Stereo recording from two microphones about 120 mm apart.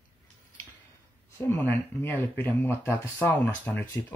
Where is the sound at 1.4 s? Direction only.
15° left (ahead or behind).